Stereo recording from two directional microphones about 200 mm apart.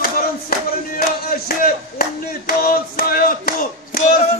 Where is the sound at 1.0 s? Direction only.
45° left (ahead or behind).